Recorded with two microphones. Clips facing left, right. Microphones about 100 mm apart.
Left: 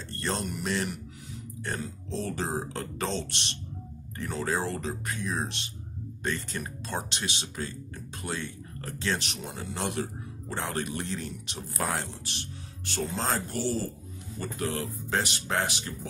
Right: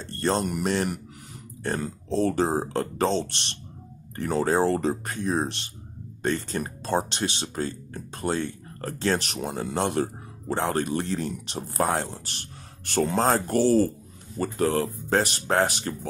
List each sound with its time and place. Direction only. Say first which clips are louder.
0.0 s speech: right 7 dB; 35° right (ahead or behind); by 9.8 s 55° right (ahead or behind)
9.8 s speech: right 6 dB; 40° right (ahead or behind)
14.4 s speech: right 8 dB; 40° right (ahead or behind)